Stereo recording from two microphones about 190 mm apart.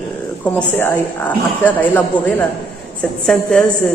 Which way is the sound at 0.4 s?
10° left (ahead or behind).